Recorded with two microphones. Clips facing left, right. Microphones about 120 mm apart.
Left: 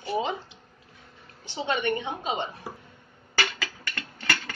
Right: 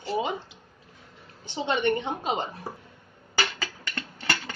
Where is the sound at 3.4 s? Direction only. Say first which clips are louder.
Even; 25° right (ahead or behind).